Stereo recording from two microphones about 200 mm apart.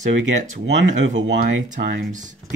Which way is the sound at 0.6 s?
70° right (ahead or behind).